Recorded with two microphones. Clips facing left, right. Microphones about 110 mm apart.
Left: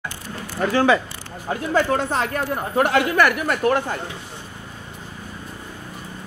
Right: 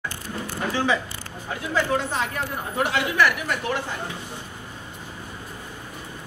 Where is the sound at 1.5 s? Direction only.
45° left (ahead or behind).